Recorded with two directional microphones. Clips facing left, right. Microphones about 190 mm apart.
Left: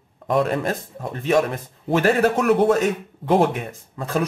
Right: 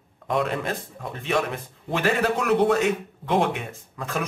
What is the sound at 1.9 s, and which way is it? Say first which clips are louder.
Speech: left 5 dB; 45° left (ahead or behind).